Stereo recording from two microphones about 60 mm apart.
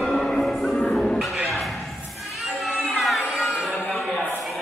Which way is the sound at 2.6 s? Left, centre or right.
Centre.